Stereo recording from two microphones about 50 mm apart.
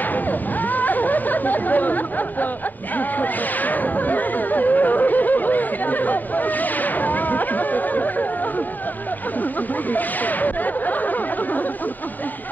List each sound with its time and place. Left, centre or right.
0.0 s chatter: left
3.0 s a sound: left
9.4 s chatter: left